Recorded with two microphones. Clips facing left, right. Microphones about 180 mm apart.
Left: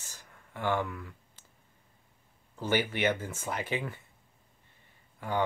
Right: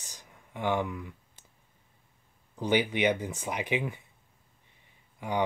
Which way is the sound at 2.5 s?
15° right (ahead or behind).